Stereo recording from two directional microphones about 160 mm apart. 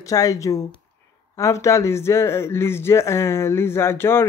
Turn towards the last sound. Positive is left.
turn(degrees=15)  # may be behind; listen again after turning